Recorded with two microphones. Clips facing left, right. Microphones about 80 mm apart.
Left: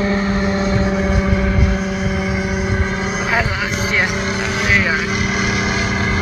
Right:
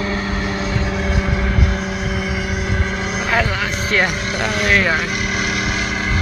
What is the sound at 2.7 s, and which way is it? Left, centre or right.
Vehicle, centre.